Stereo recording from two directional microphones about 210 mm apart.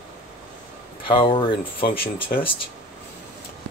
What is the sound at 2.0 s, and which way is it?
Speech, 45° left (ahead or behind).